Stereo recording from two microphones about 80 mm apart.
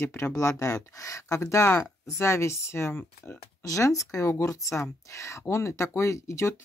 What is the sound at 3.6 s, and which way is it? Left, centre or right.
Speech, left.